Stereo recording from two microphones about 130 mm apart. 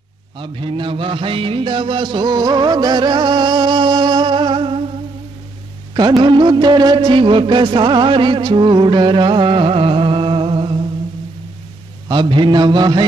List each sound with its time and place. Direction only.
0.4 s music: 40° right (ahead or behind)
6.1 s music: 40° right (ahead or behind)
12.1 s music: 35° right (ahead or behind)